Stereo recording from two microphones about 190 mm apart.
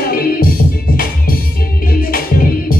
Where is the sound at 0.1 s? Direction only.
50° left (ahead or behind).